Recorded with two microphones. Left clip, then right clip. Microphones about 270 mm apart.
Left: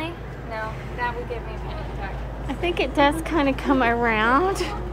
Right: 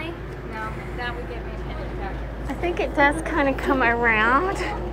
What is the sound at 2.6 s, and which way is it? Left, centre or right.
A woman's voice, centre.